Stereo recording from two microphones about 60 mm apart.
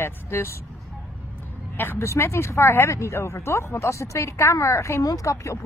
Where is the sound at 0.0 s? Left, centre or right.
Left.